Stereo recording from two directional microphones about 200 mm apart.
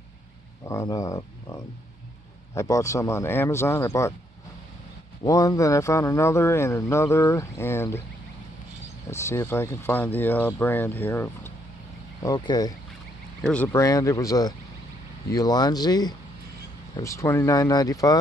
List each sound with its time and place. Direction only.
0.7 s a man's voice: 15° left (ahead or behind)
5.2 s a man's voice: 15° left (ahead or behind)
9.1 s a man's voice: 15° left (ahead or behind)